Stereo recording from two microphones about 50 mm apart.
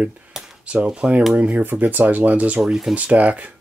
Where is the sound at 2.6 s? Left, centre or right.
Centre.